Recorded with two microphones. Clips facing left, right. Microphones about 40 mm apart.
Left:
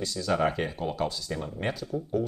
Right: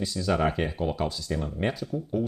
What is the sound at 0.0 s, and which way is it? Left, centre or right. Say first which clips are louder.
Speech: right 1 dB; centre.